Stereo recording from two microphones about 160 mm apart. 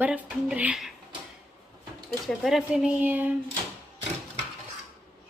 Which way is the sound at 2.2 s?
5° right (ahead or behind).